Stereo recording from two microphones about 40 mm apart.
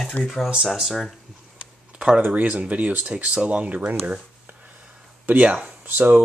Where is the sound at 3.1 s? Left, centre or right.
Right.